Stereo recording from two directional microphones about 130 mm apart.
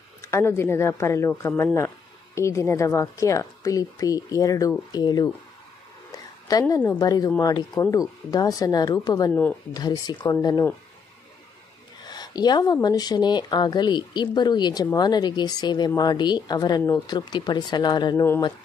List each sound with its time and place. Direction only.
0.2 s a woman's voice: 20° left (ahead or behind)
6.5 s a woman's voice: 30° left (ahead or behind)
9.3 s a woman's voice: 10° left (ahead or behind)
9.8 s speech: 30° left (ahead or behind)
12.1 s a sound: 30° left (ahead or behind)
12.8 s speech: 30° left (ahead or behind)